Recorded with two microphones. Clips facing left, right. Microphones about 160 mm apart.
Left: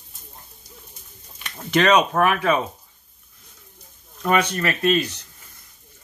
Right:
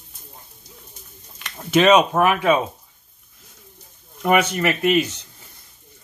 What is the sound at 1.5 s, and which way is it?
Speech, 5° right (ahead or behind).